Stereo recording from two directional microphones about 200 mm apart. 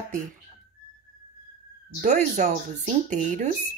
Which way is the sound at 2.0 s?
40° right (ahead or behind).